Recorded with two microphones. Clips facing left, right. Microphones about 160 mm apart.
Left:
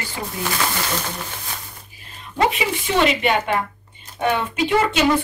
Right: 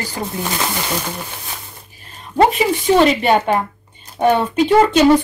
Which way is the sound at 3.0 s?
35° right (ahead or behind).